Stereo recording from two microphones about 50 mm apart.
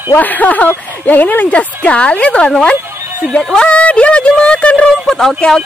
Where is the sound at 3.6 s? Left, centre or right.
Left.